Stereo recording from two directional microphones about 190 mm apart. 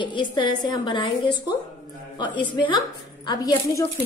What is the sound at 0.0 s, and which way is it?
A woman's voice, 25° left (ahead or behind).